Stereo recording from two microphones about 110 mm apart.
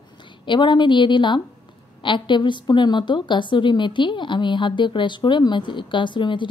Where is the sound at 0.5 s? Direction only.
45° left (ahead or behind).